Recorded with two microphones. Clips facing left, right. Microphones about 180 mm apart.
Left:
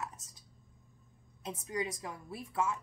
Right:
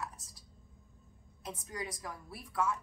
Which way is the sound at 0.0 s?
25° left (ahead or behind).